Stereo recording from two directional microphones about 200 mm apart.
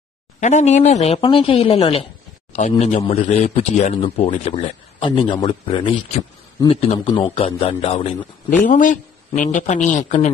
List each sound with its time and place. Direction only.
0.4 s speech: 35° left (ahead or behind)
8.6 s speech: 40° left (ahead or behind)